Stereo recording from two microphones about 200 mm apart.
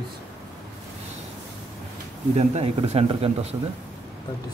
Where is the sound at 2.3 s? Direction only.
35° right (ahead or behind).